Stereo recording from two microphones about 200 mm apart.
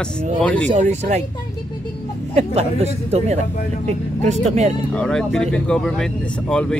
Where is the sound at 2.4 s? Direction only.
30° right (ahead or behind).